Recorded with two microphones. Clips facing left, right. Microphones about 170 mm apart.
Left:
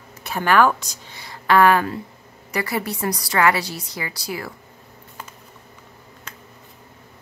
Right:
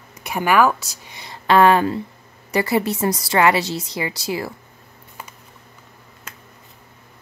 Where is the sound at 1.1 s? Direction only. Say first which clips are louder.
Right 2 dB; 25° right (ahead or behind).